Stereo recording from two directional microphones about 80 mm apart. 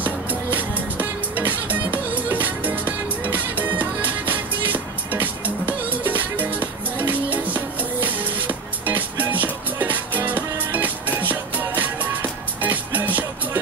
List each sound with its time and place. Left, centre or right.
0.0 s music: right